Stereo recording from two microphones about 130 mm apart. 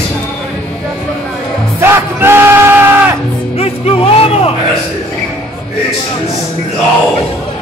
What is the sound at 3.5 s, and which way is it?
Music, 50° left (ahead or behind).